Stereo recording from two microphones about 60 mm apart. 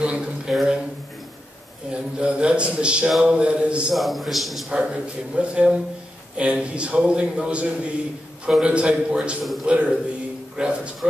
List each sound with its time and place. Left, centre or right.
0.0 s a sound: centre
0.5 s a man's voice: centre
1.9 s a man's voice: centre
3.9 s a man's voice: centre
4.6 s a man's voice: centre
9.4 s a man's voice: centre
9.7 s a man's voice: centre